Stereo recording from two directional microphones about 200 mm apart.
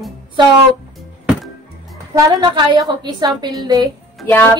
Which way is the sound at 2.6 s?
20° right (ahead or behind).